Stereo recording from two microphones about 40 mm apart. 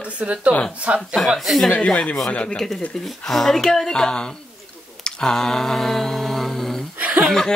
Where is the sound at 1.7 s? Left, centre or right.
Left.